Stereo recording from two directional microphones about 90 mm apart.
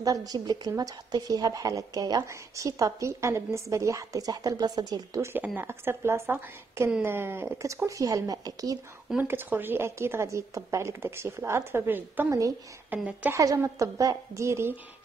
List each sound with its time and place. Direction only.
0.0 s speech: 40° right (ahead or behind)
2.2 s a woman's voice: 35° right (ahead or behind)
5.4 s speech: 20° right (ahead or behind)
7.6 s a woman's voice: 35° right (ahead or behind)
9.3 s speech: 25° right (ahead or behind)
12.3 s a woman's voice: 35° right (ahead or behind)
12.9 s a woman's voice: 20° right (ahead or behind)
13.3 s a woman's voice: 35° right (ahead or behind)